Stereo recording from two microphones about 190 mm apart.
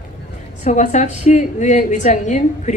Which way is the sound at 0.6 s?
40° left (ahead or behind).